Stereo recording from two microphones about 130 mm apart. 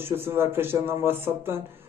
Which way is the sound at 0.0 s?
15° right (ahead or behind).